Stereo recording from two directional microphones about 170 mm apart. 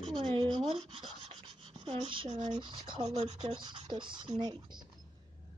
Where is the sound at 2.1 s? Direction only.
30° right (ahead or behind).